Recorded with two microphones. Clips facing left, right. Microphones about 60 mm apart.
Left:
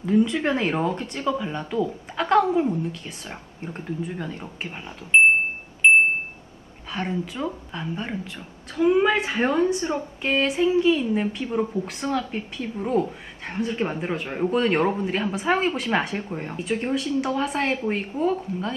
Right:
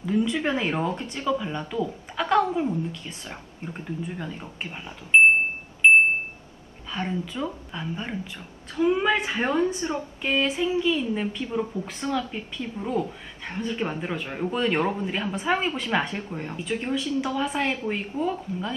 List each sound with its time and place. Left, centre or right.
0.0 s a woman's voice: centre
5.1 s a sound: centre
5.8 s wind chime: centre
6.9 s a woman's voice: centre
8.4 s speech: centre
9.8 s speech: left
10.2 s a woman's voice: centre